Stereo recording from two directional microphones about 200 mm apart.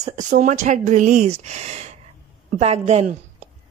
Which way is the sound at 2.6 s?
30° right (ahead or behind).